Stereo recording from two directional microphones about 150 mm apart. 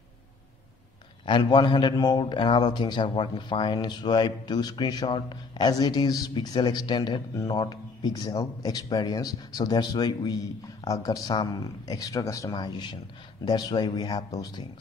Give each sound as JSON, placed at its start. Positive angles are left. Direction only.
{"t": 1.2, "sound": "a man's voice", "side_deg": 30}